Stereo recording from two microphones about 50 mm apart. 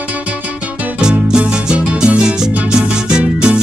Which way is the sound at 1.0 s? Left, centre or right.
Centre.